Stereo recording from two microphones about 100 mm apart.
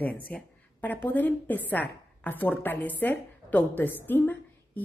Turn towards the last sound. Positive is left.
turn(degrees=20)  # may be behind; listen again after turning